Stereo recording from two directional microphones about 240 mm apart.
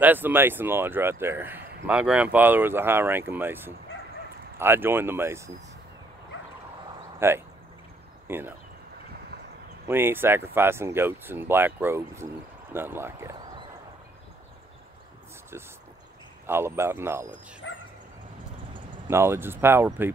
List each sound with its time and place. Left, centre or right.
0.0 s speech: centre
7.2 s speech: centre
9.8 s speech: centre
16.4 s speech: centre
17.6 s bow-wow: left
18.7 s speech: centre